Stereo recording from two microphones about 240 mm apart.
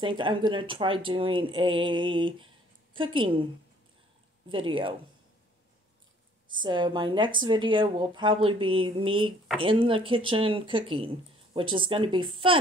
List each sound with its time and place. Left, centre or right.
0.0 s a woman's voice: centre
4.5 s speech: right
6.5 s speech: centre